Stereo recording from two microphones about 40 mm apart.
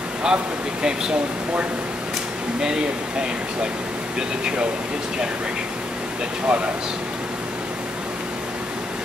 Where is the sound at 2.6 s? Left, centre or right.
Centre.